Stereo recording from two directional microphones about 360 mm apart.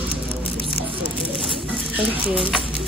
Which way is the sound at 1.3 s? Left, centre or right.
Centre.